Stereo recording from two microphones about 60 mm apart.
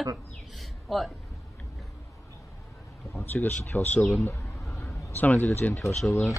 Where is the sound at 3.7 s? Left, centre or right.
Left.